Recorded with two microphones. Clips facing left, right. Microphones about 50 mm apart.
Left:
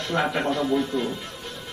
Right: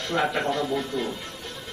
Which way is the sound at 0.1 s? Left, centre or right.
Centre.